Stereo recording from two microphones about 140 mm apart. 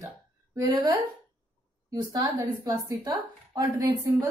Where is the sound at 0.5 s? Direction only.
25° right (ahead or behind).